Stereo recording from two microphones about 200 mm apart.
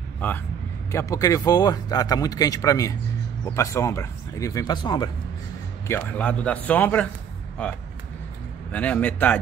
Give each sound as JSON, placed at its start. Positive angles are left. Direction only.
{"t": 0.9, "sound": "speech", "side_deg": 15}
{"t": 5.9, "sound": "speech", "side_deg": 10}
{"t": 8.7, "sound": "speech", "side_deg": 5}